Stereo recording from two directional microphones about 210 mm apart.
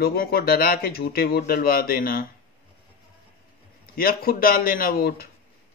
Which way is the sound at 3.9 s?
45° left (ahead or behind).